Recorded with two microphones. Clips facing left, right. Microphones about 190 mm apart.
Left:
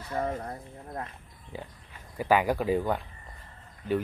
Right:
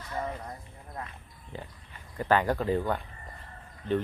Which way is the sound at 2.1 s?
10° left (ahead or behind).